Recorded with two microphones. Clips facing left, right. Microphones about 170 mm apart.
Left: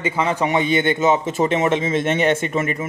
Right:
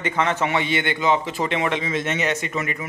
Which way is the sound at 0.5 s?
20° left (ahead or behind).